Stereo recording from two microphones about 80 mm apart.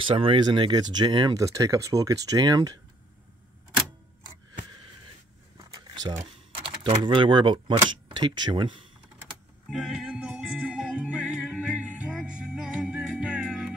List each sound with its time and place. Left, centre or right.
0.0 s speech: right
1.3 s speech: right
5.6 s typing: right
7.2 s speech: right
7.8 s speech: right
9.7 s music: centre